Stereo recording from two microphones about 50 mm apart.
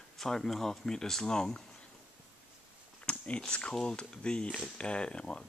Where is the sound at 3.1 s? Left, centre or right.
Centre.